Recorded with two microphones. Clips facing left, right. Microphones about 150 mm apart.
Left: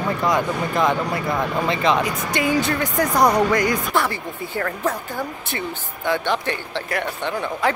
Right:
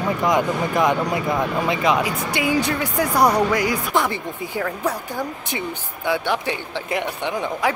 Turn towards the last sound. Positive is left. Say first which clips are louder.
# even
turn(degrees=-15)  # may be behind; listen again after turning